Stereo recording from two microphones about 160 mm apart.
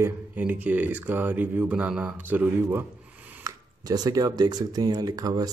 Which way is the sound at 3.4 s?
25° right (ahead or behind).